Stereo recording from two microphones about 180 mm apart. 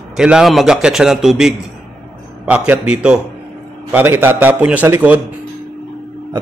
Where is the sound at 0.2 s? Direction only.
5° right (ahead or behind).